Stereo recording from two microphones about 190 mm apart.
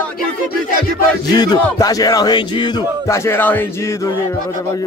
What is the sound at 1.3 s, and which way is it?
Music, 20° left (ahead or behind).